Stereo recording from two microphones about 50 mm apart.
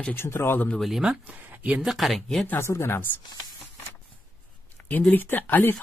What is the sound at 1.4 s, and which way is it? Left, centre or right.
Speech, right.